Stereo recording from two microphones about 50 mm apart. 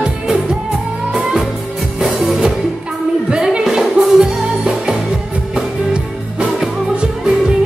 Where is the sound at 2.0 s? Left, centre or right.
Centre.